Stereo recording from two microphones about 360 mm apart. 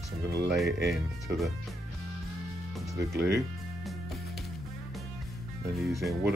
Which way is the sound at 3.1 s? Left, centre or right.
Right.